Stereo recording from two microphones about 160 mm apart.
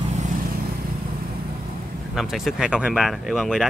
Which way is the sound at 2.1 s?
Centre (ahead or behind).